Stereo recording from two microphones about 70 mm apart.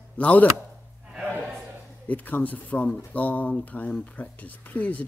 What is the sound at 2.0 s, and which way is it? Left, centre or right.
Speech, left.